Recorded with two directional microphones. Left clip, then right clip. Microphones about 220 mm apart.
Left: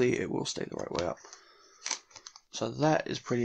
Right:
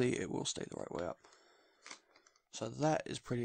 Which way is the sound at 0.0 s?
50° right (ahead or behind).